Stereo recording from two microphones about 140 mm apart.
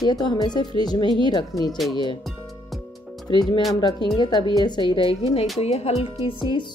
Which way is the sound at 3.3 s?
35° left (ahead or behind).